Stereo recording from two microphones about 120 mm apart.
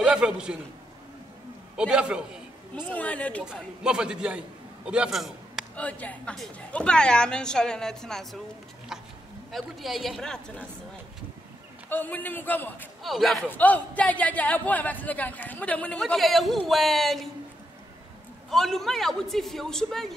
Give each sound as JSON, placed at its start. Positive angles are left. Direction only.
{"t": 0.0, "sound": "a man's voice", "side_deg": -5}
{"t": 1.8, "sound": "a man's voice", "side_deg": -5}
{"t": 2.7, "sound": "a woman's voice", "side_deg": 10}
{"t": 3.4, "sound": "a man's voice", "side_deg": -5}
{"t": 5.8, "sound": "a woman's voice", "side_deg": 10}
{"t": 9.5, "sound": "a man's voice", "side_deg": 0}
{"t": 11.9, "sound": "a woman's voice", "side_deg": 15}
{"t": 13.0, "sound": "a man's voice", "side_deg": 0}
{"t": 13.5, "sound": "a woman's voice", "side_deg": 15}
{"t": 16.0, "sound": "a man's voice", "side_deg": 0}
{"t": 18.5, "sound": "a man's voice", "side_deg": 0}